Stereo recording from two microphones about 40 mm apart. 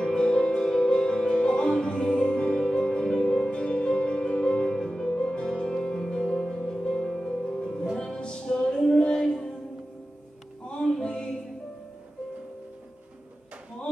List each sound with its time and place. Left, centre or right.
0.0 s music: centre
10.7 s music: left